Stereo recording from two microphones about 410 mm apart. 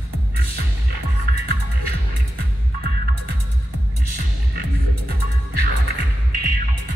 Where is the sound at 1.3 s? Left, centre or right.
Right.